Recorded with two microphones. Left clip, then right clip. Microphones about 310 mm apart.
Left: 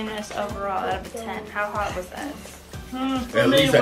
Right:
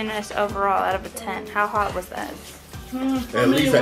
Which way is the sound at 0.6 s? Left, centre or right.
Centre.